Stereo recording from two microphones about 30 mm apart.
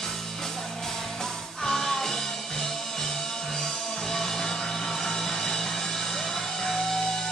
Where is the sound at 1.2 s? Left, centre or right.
Centre.